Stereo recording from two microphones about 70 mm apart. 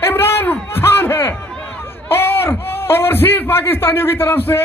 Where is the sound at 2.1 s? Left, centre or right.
Left.